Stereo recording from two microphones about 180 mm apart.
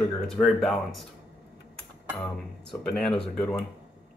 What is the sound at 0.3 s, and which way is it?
Speech, centre (ahead or behind).